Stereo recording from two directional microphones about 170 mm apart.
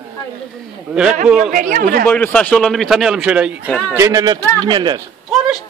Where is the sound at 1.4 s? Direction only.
50° right (ahead or behind).